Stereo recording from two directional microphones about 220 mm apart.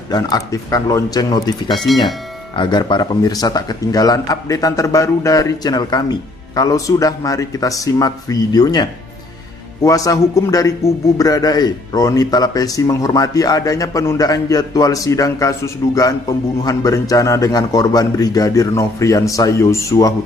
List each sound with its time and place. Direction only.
0.1 s a man's voice: 15° left (ahead or behind)
9.8 s a man's voice: 15° left (ahead or behind)